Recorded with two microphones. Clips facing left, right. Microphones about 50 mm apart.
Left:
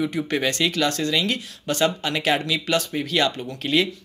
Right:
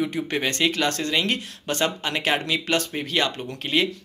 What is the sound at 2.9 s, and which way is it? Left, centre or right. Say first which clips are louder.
Speech: left 2 dB; right.